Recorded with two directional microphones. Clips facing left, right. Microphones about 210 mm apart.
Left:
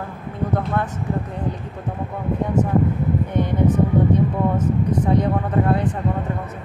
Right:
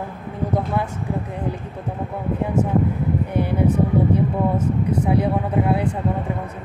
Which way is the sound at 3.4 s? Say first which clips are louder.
Left 1 dB; 10° right (ahead or behind).